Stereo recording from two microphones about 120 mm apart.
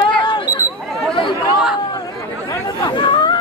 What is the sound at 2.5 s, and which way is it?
Chatter, 40° left (ahead or behind).